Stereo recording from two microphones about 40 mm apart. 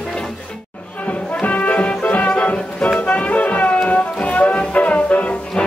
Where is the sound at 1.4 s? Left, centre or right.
Left.